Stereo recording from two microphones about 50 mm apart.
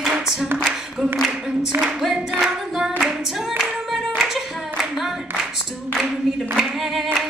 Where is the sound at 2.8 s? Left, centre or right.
Centre.